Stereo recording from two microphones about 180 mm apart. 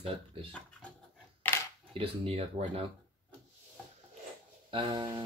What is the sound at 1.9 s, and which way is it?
Speech, 30° right (ahead or behind).